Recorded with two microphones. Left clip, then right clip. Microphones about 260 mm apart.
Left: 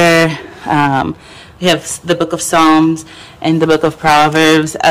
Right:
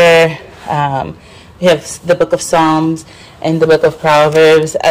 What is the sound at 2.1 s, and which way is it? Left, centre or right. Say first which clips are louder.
Speech: right 3 dB; centre.